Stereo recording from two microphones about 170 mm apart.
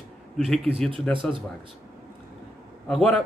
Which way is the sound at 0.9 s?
30° right (ahead or behind).